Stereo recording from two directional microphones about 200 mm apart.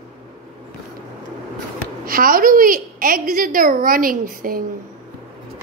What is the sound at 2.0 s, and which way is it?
A woman's voice, 45° right (ahead or behind).